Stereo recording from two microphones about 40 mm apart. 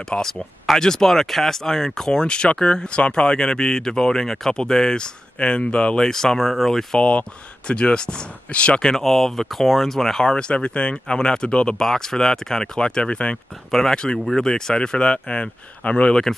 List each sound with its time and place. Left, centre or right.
0.1 s speech: left
0.7 s speech: centre; by 5.9 s left
5.9 s speech: centre
7.0 s speech: left
7.6 s speech: left
8.8 s speech: centre
10.3 s speech: left
11.8 s speech: centre; by 13.4 s left
13.7 s speech: centre
13.9 s speech: centre